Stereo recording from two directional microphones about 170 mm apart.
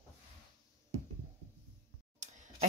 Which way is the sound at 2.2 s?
45° right (ahead or behind).